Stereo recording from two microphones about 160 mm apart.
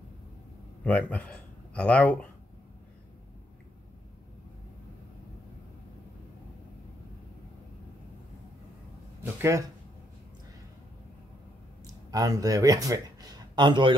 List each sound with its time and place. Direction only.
0.8 s speech: 10° left (ahead or behind)
9.2 s speech: 15° right (ahead or behind)
11.8 s speech: 20° right (ahead or behind)